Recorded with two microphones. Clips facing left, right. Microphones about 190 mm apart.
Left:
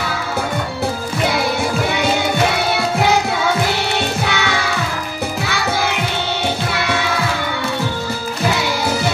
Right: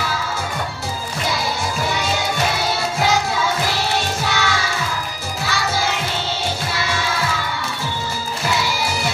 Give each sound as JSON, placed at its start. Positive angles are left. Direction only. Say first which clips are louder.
{"t": 4.2, "sound": "music", "louder": "left 2 dB", "side_deg": 60}